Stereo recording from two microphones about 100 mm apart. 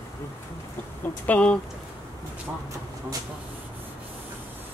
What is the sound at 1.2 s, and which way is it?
Speech, 15° left (ahead or behind).